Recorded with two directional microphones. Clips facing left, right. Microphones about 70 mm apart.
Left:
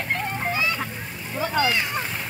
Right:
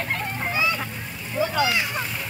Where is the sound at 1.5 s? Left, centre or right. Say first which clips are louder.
Left 2 dB; left.